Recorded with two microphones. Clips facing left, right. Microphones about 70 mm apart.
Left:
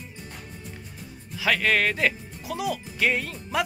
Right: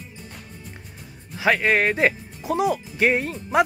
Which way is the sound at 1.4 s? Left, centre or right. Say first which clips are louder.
Right 4 dB; right.